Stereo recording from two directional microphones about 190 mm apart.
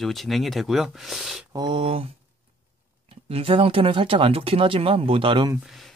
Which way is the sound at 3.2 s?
30° right (ahead or behind).